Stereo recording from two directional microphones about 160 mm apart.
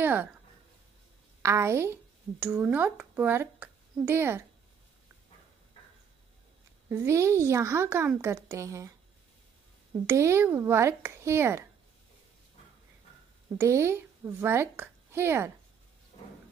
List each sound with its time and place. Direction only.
0.0 s speech: 10° right (ahead or behind)
1.4 s speech: 15° right (ahead or behind)
6.9 s speech: 15° right (ahead or behind)
10.0 s speech: 15° right (ahead or behind)
13.6 s speech: 15° right (ahead or behind)